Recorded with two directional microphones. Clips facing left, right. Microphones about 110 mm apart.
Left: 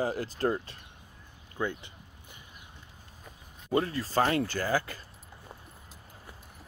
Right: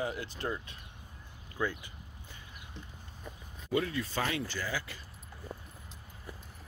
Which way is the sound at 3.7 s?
35° left (ahead or behind).